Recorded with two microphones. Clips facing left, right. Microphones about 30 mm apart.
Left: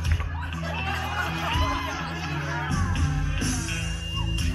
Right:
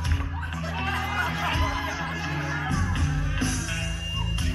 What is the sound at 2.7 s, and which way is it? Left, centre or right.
Music, right.